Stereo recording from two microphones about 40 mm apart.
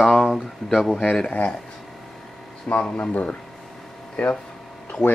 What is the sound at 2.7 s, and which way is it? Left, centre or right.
Speech, left.